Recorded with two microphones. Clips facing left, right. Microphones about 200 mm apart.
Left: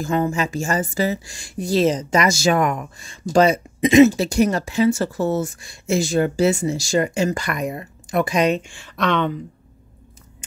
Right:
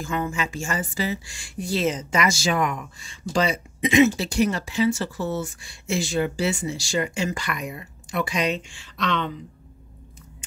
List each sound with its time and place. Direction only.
0.0 s speech: 40° left (ahead or behind); by 9.3 s 55° left (ahead or behind)